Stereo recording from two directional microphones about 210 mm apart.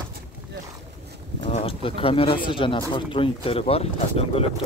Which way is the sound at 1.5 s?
25° left (ahead or behind).